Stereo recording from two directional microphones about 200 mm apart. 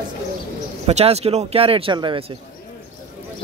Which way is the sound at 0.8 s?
30° right (ahead or behind).